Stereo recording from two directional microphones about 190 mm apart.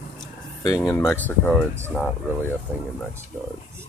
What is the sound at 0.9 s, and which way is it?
Speech, 15° left (ahead or behind).